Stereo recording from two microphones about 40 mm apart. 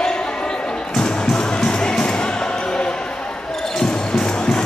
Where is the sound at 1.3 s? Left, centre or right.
Left.